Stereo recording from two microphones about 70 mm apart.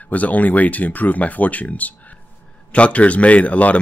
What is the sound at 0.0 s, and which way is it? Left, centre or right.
Speech, left.